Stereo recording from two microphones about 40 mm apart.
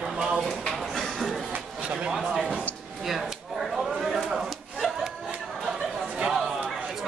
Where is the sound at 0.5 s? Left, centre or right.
Centre.